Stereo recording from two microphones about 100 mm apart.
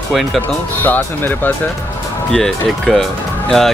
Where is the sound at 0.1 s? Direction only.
Centre (ahead or behind).